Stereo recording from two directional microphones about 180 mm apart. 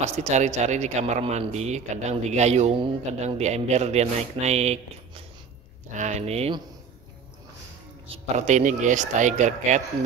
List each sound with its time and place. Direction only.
0.1 s a man's voice: 40° right (ahead or behind)
8.1 s a man's voice: 40° right (ahead or behind)